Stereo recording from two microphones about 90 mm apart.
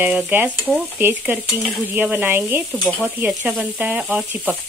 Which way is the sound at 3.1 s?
20° right (ahead or behind).